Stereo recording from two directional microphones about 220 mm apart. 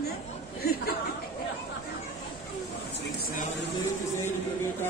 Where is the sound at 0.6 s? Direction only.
45° left (ahead or behind).